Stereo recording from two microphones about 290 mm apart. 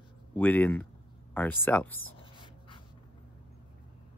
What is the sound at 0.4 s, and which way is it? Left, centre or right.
Speech, centre.